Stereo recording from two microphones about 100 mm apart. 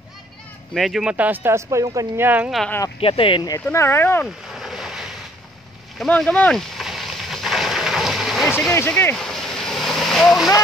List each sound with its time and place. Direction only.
0.7 s speech: centre (ahead or behind)
1.1 s speech: 15° right (ahead or behind); by 2.2 s 35° right (ahead or behind)
2.2 s speech: 15° right (ahead or behind)
3.0 s speech: 65° left (ahead or behind)
3.6 s speech: 25° left (ahead or behind)
4.5 s a sound: 5° right (ahead or behind)
6.0 s speech: 10° left (ahead or behind)
6.8 s rain: centre (ahead or behind)
8.7 s speech: 25° left (ahead or behind)
9.1 s vehicle: 5° left (ahead or behind)